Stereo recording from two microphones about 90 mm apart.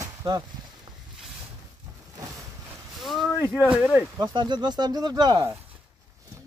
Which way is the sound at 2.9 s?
Centre (ahead or behind).